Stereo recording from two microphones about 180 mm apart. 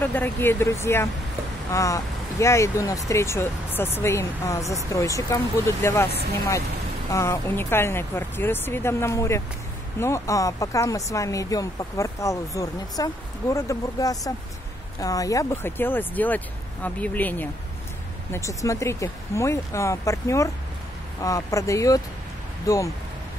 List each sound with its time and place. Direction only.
0.0 s speech: 10° left (ahead or behind)
7.1 s speech: 15° left (ahead or behind)